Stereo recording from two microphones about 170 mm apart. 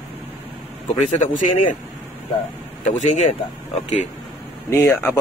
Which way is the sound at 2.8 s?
45° left (ahead or behind).